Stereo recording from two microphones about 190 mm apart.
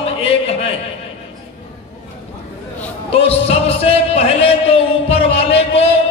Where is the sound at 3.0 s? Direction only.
30° left (ahead or behind).